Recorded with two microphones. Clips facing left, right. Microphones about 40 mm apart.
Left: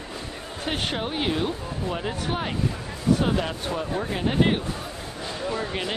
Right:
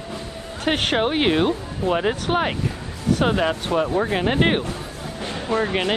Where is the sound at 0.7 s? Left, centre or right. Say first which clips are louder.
Right 8 dB; right.